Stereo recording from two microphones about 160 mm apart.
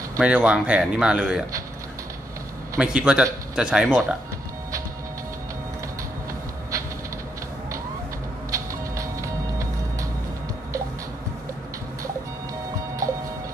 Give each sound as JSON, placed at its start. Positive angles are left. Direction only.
{"t": 0.2, "sound": "speech", "side_deg": -5}
{"t": 2.8, "sound": "speech", "side_deg": -5}
{"t": 8.5, "sound": "music", "side_deg": -20}